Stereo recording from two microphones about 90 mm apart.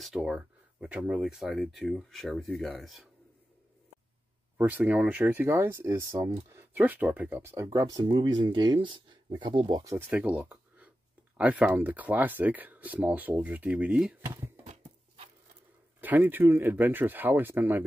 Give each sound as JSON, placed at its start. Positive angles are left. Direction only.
{"t": 0.0, "sound": "speech", "side_deg": -5}
{"t": 4.6, "sound": "speech", "side_deg": -20}
{"t": 7.4, "sound": "speech", "side_deg": -35}
{"t": 9.9, "sound": "speech", "side_deg": -20}
{"t": 10.4, "sound": "a sound", "side_deg": -15}
{"t": 11.3, "sound": "speech", "side_deg": -15}
{"t": 14.2, "sound": "speech", "side_deg": -30}
{"t": 16.0, "sound": "speech", "side_deg": -20}